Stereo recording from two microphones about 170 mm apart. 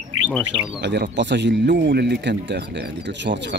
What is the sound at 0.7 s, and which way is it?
Speech, 80° right.